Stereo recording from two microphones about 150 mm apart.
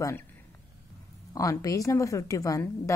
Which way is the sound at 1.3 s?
20° left (ahead or behind).